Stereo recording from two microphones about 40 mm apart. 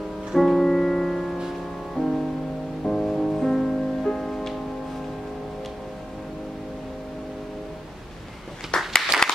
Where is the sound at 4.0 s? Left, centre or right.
Centre.